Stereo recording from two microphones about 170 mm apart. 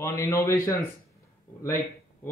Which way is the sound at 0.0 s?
15° left (ahead or behind).